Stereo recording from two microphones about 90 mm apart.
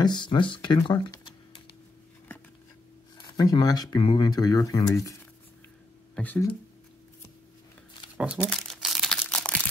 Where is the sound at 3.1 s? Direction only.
50° left (ahead or behind).